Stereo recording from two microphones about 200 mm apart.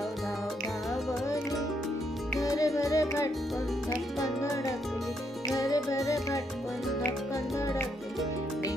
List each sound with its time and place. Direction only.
2.4 s music: 15° left (ahead or behind)
5.5 s music: 15° left (ahead or behind)